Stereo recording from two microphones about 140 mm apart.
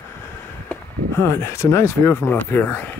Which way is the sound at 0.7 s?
15° left (ahead or behind).